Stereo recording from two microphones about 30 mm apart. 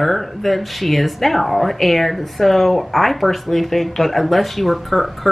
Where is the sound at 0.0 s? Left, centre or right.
Centre.